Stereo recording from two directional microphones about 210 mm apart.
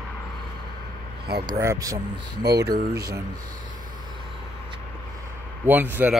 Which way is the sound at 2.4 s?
50° right (ahead or behind).